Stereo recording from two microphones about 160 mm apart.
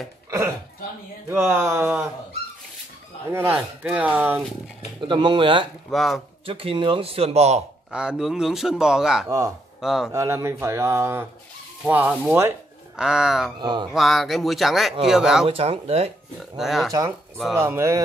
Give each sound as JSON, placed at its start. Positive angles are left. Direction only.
{"t": 0.3, "sound": "a sound", "side_deg": -20}
{"t": 1.3, "sound": "speech", "side_deg": -15}
{"t": 3.3, "sound": "speech", "side_deg": -15}
{"t": 5.0, "sound": "speech", "side_deg": -30}
{"t": 5.9, "sound": "a man's voice", "side_deg": 0}
{"t": 6.4, "sound": "speech", "side_deg": -35}
{"t": 7.9, "sound": "a man's voice", "side_deg": -5}
{"t": 10.1, "sound": "a man's voice", "side_deg": -15}
{"t": 13.6, "sound": "speech", "side_deg": -25}
{"t": 13.9, "sound": "a man's voice", "side_deg": 0}
{"t": 15.4, "sound": "speech", "side_deg": -35}
{"t": 16.5, "sound": "a man's voice", "side_deg": 0}
{"t": 17.6, "sound": "speech", "side_deg": -15}